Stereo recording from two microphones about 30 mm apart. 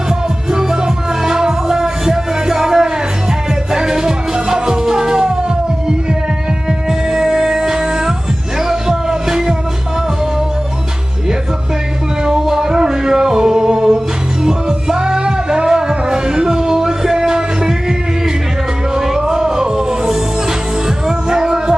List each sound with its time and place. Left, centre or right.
0.5 s music: right
6.9 s music: centre
12.3 s music: centre
18.9 s music: centre
21.3 s music: right